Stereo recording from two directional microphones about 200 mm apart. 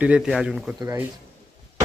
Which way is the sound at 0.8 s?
15° right (ahead or behind).